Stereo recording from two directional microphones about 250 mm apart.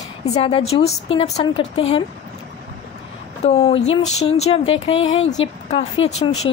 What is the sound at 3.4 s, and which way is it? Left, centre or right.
A woman's voice, left.